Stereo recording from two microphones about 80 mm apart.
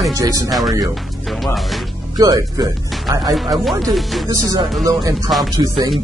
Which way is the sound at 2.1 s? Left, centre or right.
Right.